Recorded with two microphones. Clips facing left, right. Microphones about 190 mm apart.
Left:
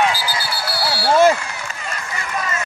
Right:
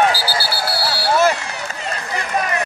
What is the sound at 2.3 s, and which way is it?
Run, 65° right (ahead or behind).